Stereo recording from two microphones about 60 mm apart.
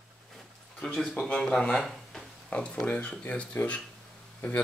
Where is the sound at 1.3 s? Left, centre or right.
Centre.